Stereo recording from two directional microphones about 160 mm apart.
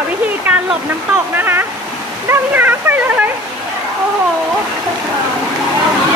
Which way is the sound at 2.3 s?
10° right (ahead or behind).